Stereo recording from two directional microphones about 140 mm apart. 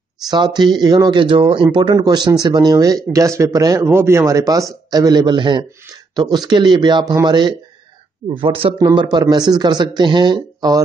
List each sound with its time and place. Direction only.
0.3 s a man's voice: 30° right (ahead or behind)